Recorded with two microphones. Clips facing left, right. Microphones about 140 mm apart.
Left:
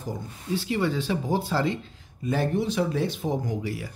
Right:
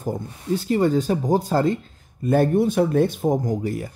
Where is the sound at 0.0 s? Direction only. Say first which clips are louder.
Right 7 dB; 45° right (ahead or behind).